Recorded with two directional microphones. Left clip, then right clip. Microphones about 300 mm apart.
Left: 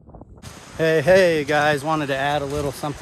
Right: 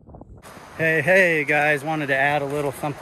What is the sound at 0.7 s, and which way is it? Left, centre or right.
Speech, centre.